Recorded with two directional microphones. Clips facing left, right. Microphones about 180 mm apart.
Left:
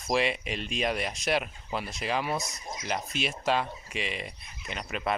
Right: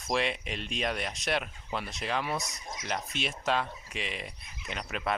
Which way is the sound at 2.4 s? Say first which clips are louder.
Left 2 dB; 30° left (ahead or behind).